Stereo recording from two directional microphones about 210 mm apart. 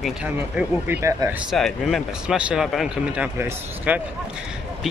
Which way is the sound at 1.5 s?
Centre (ahead or behind).